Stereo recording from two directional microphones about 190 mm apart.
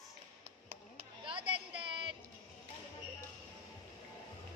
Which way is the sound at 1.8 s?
25° right (ahead or behind).